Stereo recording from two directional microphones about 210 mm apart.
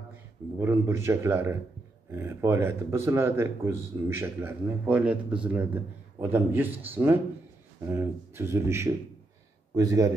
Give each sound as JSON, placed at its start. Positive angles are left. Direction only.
{"t": 0.6, "sound": "speech", "side_deg": -10}